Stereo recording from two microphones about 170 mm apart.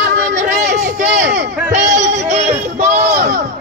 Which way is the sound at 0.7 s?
45° right (ahead or behind).